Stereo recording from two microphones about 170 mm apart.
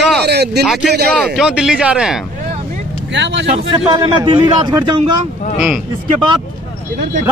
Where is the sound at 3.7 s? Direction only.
25° right (ahead or behind).